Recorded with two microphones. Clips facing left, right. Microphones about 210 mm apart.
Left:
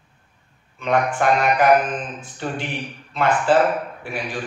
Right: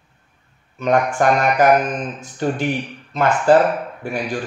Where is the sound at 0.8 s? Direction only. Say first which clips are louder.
Right 3 dB; 45° right (ahead or behind).